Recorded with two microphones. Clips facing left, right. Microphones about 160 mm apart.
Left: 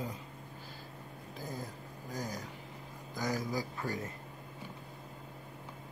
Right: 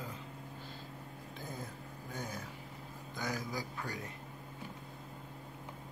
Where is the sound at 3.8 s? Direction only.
45° left (ahead or behind).